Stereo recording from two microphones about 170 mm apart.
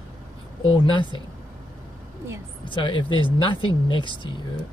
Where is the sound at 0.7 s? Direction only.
30° left (ahead or behind).